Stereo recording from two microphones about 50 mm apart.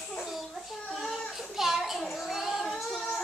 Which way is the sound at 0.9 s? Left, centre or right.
Centre.